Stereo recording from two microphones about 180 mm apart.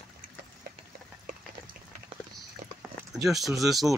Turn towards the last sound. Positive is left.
turn(degrees=0)  # may be behind; listen again after turning